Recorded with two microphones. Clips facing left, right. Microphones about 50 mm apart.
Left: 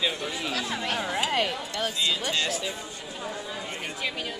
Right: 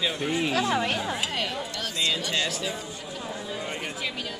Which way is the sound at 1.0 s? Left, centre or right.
Centre.